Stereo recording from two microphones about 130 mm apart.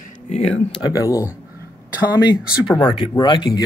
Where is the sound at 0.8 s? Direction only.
30° left (ahead or behind).